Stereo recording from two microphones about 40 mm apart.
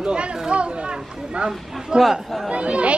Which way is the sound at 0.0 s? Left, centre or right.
Right.